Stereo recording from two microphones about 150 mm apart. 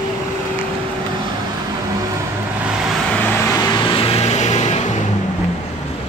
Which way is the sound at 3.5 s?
30° left (ahead or behind).